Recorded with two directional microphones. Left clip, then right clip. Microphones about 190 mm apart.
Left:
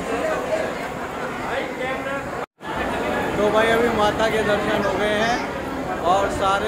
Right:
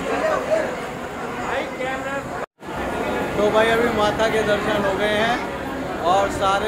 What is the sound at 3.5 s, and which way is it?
Speech, centre (ahead or behind).